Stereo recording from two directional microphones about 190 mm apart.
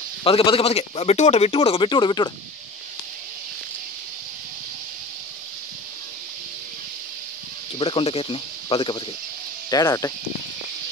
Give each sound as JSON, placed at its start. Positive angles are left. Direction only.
{"t": 0.2, "sound": "speech", "side_deg": 30}
{"t": 7.8, "sound": "speech", "side_deg": 30}